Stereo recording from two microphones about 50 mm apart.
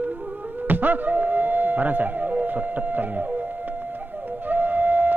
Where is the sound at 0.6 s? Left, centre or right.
Right.